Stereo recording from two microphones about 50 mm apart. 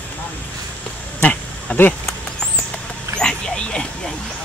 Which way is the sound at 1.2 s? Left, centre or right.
Left.